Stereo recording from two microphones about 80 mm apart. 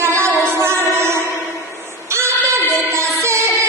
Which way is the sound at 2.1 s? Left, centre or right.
Right.